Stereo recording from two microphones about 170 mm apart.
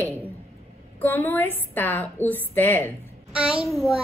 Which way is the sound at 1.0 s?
10° left (ahead or behind).